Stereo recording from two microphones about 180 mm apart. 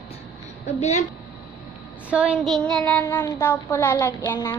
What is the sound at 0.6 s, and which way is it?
Speech, 40° left (ahead or behind).